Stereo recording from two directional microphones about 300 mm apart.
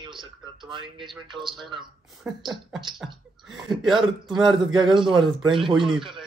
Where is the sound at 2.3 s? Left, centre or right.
Centre.